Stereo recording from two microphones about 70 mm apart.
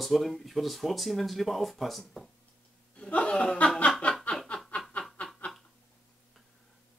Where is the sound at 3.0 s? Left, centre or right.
Centre.